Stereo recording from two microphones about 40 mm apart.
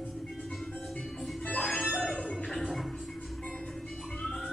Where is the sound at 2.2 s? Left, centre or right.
Centre.